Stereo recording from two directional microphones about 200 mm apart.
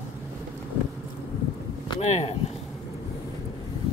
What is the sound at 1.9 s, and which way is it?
Speech, 35° left (ahead or behind).